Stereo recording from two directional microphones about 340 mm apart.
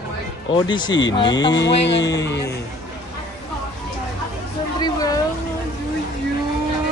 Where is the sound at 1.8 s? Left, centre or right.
Left.